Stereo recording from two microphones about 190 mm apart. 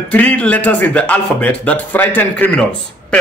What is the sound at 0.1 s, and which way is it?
Speech, 5° left (ahead or behind).